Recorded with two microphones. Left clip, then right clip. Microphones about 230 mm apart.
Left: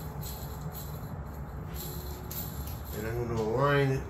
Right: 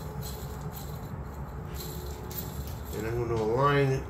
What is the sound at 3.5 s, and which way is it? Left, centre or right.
Speech, centre.